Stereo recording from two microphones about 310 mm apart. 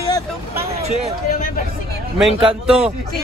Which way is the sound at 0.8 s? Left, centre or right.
Centre.